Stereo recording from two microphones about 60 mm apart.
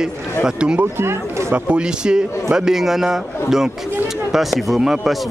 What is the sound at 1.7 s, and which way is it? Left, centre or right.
A man's voice, centre.